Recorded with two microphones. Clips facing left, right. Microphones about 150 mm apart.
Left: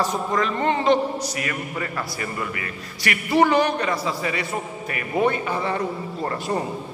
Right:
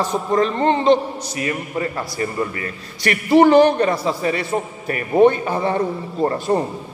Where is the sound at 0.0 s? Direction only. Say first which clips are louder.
Right 4 dB; 30° right (ahead or behind).